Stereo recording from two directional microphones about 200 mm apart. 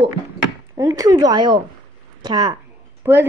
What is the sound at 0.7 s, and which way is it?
Speech, 15° right (ahead or behind).